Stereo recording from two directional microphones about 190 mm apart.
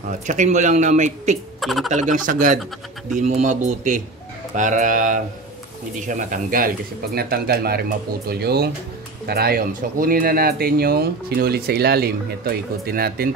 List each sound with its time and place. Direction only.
0.3 s a man's voice: 40° right (ahead or behind)
1.6 s speech: centre (ahead or behind)
1.9 s a man's voice: 40° right (ahead or behind)